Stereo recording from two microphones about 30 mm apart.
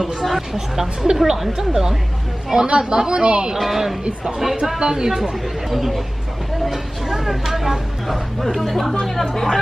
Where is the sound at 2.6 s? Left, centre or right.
Right.